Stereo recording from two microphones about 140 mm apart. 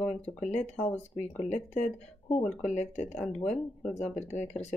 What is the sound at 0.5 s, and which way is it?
Speech, 50° left (ahead or behind).